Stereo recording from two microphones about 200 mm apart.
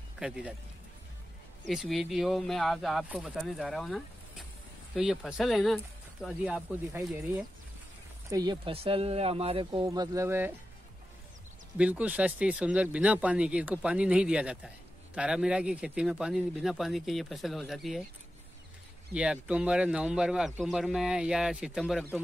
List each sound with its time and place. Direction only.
0.2 s a man's voice: 5° right (ahead or behind)
1.7 s a man's voice: centre (ahead or behind)
8.3 s speech: 20° right (ahead or behind)
11.8 s a man's voice: 5° right (ahead or behind)
19.1 s a man's voice: 5° right (ahead or behind)